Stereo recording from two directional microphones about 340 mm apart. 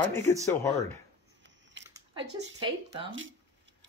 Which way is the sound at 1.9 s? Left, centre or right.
Centre.